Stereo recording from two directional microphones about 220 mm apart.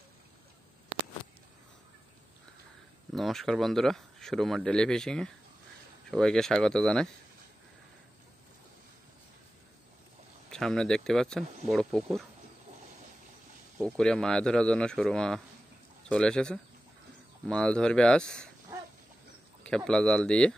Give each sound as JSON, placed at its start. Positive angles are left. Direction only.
{"t": 3.1, "sound": "speech", "side_deg": 0}
{"t": 10.5, "sound": "speech", "side_deg": 5}
{"t": 13.7, "sound": "speech", "side_deg": 5}
{"t": 19.6, "sound": "speech", "side_deg": 5}